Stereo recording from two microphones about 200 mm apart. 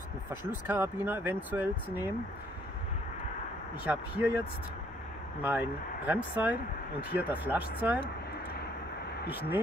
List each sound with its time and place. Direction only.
0.3 s speech: 10° right (ahead or behind)
3.8 s speech: 10° right (ahead or behind)
5.4 s speech: 10° right (ahead or behind)